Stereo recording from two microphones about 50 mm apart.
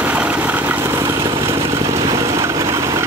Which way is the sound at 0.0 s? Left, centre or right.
Right.